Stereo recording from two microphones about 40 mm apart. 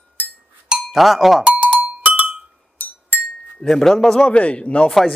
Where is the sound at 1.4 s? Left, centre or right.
Right.